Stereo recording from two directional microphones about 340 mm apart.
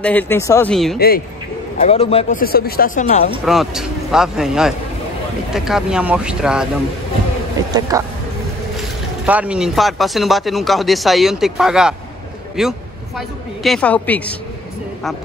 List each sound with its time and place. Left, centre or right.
0.0 s speech: centre
0.9 s speech: left
3.4 s speech: centre
9.2 s speech: centre